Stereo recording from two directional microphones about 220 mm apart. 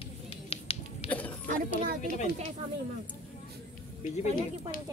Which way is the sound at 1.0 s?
5° left (ahead or behind).